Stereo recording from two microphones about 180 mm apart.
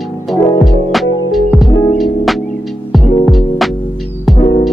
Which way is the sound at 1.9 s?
Centre (ahead or behind).